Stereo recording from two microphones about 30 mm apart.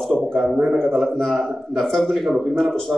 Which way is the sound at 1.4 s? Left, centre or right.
Centre.